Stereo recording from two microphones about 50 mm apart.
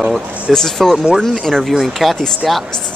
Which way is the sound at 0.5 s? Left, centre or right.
Centre.